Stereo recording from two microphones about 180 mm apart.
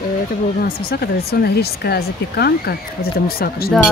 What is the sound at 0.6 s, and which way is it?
Speech, 60° left (ahead or behind).